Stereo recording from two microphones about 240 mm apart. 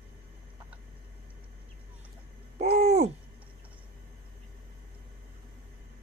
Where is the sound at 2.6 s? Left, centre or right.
Right.